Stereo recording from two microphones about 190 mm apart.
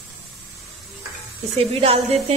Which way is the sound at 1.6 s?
30° right (ahead or behind).